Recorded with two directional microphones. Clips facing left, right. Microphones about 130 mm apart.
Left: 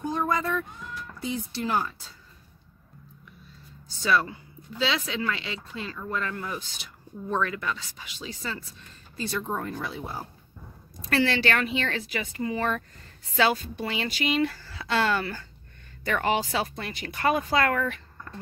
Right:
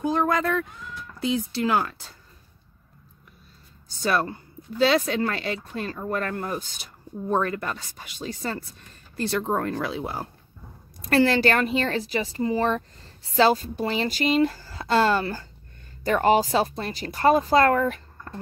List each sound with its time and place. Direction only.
0.0 s speech: 80° right
1.2 s speech: 90° right; by 2.1 s 70° right (ahead or behind)
3.9 s speech: 45° right (ahead or behind)
9.1 s speech: 70° right (ahead or behind)
11.1 s a woman's voice: 40° right (ahead or behind)